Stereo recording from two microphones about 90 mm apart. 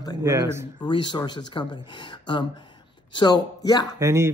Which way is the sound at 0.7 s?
60° left (ahead or behind).